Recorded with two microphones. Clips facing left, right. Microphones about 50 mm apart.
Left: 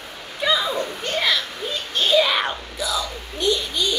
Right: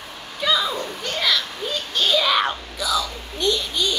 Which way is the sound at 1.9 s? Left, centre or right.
Centre.